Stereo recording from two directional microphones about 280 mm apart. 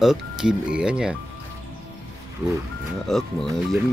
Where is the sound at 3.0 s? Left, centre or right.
Centre.